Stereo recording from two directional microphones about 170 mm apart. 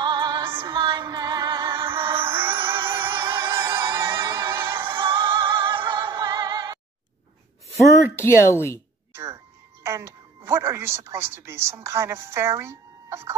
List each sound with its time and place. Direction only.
0.0 s music: 25° right (ahead or behind)
8.2 s speech: 15° left (ahead or behind)
9.1 s music: 15° right (ahead or behind)
9.8 s speech: 15° right (ahead or behind)